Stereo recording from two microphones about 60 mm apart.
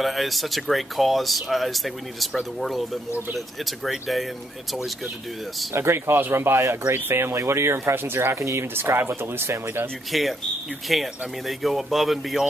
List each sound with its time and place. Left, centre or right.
0.0 s speech: centre
5.7 s speech: right
10.1 s speech: centre